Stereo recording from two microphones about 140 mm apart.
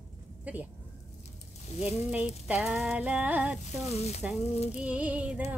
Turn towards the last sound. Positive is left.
turn(degrees=-10)  # may be behind; listen again after turning